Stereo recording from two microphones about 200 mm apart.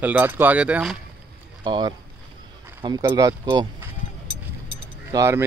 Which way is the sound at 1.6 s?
25° right (ahead or behind).